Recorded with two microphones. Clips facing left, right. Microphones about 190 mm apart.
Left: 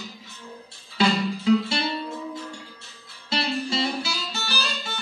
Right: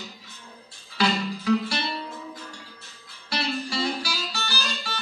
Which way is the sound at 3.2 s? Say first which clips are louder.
Left 3 dB; 25° left (ahead or behind).